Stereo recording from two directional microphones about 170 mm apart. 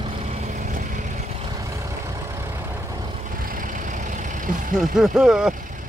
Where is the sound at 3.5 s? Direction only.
50° right (ahead or behind).